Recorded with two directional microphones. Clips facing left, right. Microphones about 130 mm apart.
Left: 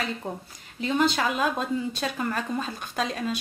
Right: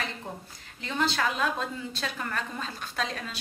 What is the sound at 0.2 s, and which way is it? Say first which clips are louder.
A woman's voice: left 5 dB; 15° left (ahead or behind).